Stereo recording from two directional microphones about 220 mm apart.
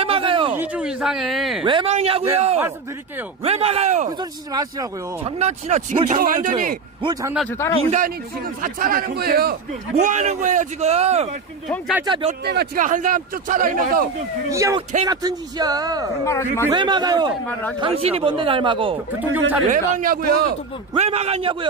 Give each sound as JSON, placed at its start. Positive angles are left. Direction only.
{"t": 0.0, "sound": "a sound", "side_deg": -25}
{"t": 0.6, "sound": "speech", "side_deg": -5}
{"t": 1.6, "sound": "a man's voice", "side_deg": -20}
{"t": 4.2, "sound": "speech", "side_deg": -15}
{"t": 5.4, "sound": "a man's voice", "side_deg": -30}
{"t": 7.0, "sound": "speech", "side_deg": -20}
{"t": 8.6, "sound": "a man's voice", "side_deg": -40}
{"t": 12.4, "sound": "a man's voice", "side_deg": -40}
{"t": 14.5, "sound": "speech", "side_deg": -15}
{"t": 16.3, "sound": "speech", "side_deg": 10}
{"t": 16.7, "sound": "speech", "side_deg": -20}
{"t": 19.1, "sound": "speech", "side_deg": -10}
{"t": 19.7, "sound": "a man's voice", "side_deg": -40}
{"t": 20.9, "sound": "speech", "side_deg": -30}